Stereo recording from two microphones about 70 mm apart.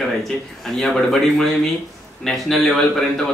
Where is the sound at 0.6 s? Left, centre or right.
Centre.